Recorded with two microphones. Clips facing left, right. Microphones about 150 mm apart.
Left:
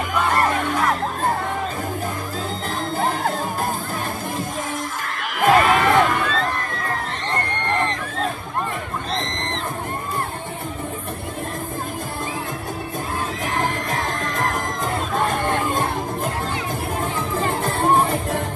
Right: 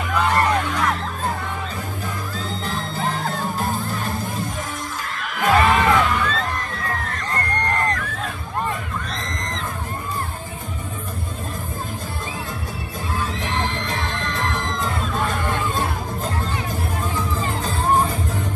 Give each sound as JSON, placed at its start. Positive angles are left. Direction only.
{"t": 0.3, "sound": "music", "side_deg": 50}
{"t": 2.7, "sound": "music", "side_deg": 45}
{"t": 5.4, "sound": "music", "side_deg": 50}
{"t": 9.1, "sound": "crowd", "side_deg": 30}
{"t": 13.6, "sound": "music", "side_deg": 45}
{"t": 17.4, "sound": "music", "side_deg": 55}